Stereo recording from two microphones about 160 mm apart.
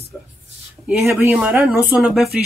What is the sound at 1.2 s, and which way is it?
Speech, 15° right (ahead or behind).